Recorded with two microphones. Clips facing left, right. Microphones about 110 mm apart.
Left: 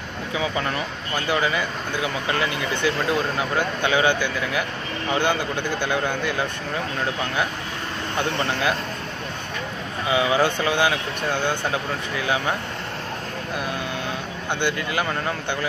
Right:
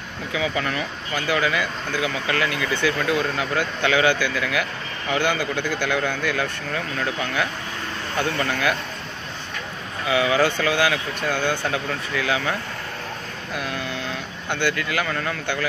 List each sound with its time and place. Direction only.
0.3 s speech: 30° left (ahead or behind)
10.0 s speech: 25° left (ahead or behind)
14.5 s speech: 20° left (ahead or behind)